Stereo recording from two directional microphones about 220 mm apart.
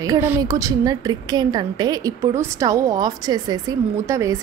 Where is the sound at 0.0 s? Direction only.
15° right (ahead or behind).